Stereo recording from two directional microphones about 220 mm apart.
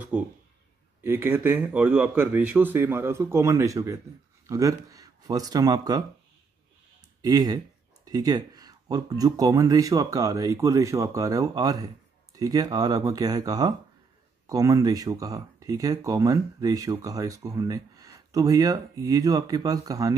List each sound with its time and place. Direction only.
0.1 s speech: 5° right (ahead or behind)
7.2 s speech: 15° right (ahead or behind)